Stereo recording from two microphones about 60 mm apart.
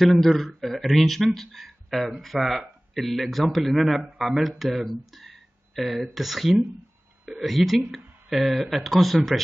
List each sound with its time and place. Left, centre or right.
0.0 s a man's voice: centre